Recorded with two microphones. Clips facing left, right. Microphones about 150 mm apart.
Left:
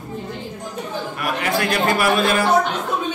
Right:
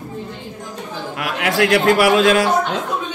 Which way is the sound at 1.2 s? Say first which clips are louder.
Right 4 dB; 90° right.